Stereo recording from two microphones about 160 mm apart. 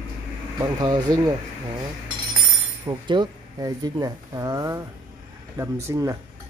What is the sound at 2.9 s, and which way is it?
Speech, 25° right (ahead or behind).